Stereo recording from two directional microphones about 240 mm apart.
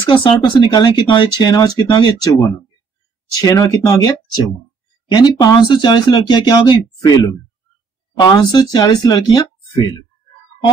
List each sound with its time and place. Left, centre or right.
0.0 s speech: centre
3.3 s speech: centre
5.1 s speech: centre